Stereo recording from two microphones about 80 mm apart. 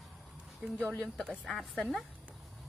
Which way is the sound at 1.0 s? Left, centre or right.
Centre.